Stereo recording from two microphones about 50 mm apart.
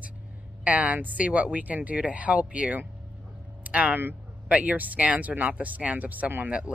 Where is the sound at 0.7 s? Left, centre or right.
Right.